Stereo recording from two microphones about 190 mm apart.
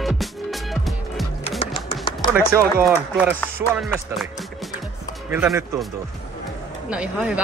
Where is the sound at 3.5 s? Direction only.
10° right (ahead or behind).